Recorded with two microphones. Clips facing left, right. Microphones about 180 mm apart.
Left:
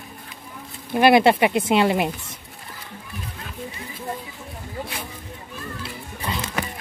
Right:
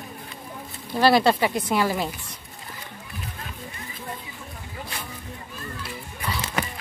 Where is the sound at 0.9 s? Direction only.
20° left (ahead or behind).